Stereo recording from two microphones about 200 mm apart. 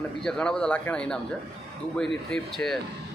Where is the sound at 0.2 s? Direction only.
5° left (ahead or behind).